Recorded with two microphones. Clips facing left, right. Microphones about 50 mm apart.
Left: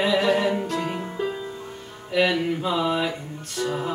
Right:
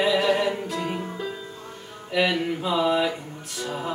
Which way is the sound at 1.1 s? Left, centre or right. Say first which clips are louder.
Left 4 dB; centre.